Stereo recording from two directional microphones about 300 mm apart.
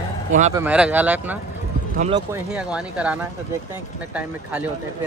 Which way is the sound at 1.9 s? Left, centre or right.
Right.